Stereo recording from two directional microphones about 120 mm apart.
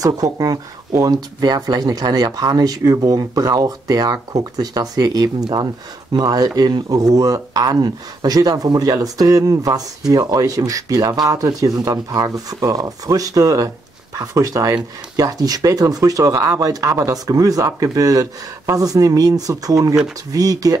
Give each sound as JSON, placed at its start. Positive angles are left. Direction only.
{"t": 0.0, "sound": "speech", "side_deg": -30}